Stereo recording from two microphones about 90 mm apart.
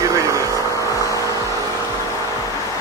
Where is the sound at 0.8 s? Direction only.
40° left (ahead or behind).